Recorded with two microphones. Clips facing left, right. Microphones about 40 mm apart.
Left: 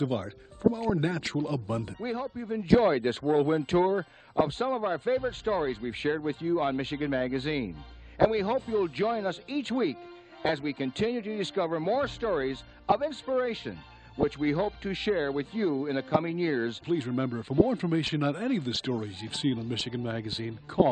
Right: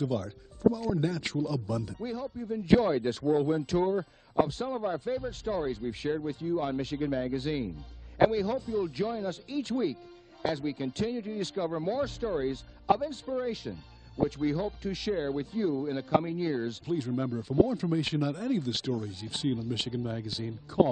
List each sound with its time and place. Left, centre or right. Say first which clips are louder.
0.0 s speech: left 1 dB; left